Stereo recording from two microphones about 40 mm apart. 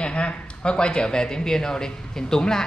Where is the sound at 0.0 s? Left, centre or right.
Left.